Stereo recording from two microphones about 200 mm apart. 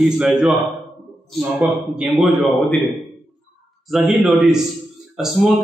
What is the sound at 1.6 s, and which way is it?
Speech, 5° right (ahead or behind).